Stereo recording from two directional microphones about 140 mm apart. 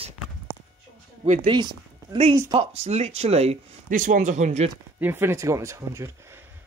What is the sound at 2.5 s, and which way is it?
Speech, 45° right (ahead or behind).